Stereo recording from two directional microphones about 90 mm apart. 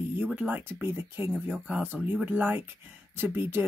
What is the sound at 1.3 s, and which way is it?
Speech, 15° right (ahead or behind).